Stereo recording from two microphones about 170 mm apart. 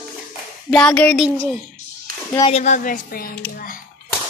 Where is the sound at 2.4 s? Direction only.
40° left (ahead or behind); by 3.3 s 55° left (ahead or behind).